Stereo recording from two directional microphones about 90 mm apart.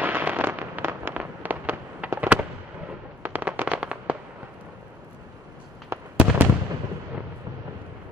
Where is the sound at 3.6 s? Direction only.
10° right (ahead or behind).